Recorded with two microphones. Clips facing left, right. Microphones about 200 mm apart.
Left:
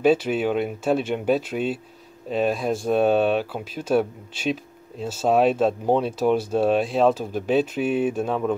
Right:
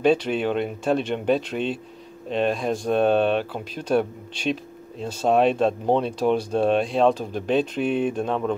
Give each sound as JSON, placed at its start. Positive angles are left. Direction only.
{"t": 0.0, "sound": "speech", "side_deg": 5}